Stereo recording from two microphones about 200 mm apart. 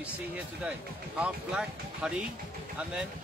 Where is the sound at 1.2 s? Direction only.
5° right (ahead or behind).